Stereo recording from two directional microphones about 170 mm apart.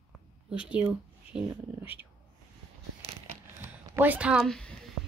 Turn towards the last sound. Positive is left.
turn(degrees=5)  # may be behind; listen again after turning